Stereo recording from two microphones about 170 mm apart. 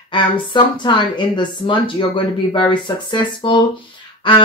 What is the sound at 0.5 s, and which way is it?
A woman's voice, 25° left (ahead or behind).